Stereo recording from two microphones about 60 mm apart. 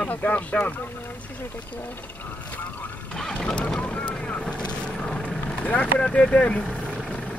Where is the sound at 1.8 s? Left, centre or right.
Left.